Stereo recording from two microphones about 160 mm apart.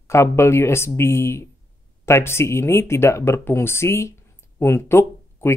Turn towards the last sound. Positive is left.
turn(degrees=15)  # may be behind; listen again after turning